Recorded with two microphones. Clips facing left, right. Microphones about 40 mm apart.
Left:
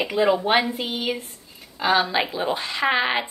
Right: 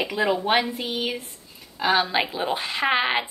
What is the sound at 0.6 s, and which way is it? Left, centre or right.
Speech, left.